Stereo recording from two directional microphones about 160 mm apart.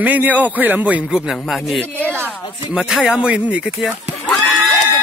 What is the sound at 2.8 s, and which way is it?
Speech, centre (ahead or behind).